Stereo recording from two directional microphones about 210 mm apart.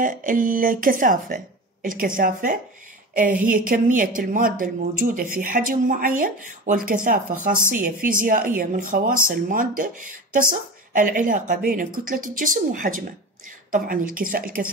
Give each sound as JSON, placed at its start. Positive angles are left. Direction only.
{"t": 0.0, "sound": "speech", "side_deg": -40}